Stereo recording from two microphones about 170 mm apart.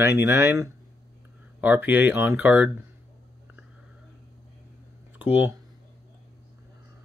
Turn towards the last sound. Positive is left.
turn(degrees=-10)  # may be behind; listen again after turning